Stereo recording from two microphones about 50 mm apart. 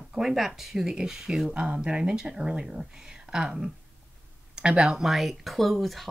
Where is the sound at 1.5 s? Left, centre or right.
Right.